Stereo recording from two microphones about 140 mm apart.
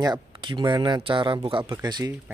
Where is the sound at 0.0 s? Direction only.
30° right (ahead or behind).